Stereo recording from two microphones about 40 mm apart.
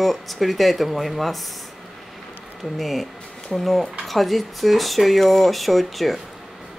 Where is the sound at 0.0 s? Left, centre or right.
Centre.